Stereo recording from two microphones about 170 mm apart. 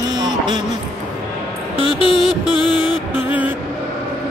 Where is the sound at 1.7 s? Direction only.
30° left (ahead or behind).